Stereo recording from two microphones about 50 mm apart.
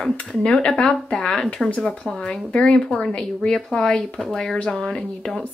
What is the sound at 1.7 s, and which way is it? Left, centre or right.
Speech, left.